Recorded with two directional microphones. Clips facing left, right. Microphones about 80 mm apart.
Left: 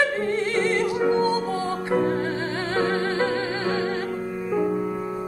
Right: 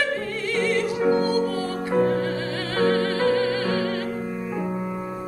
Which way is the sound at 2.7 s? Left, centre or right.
Left.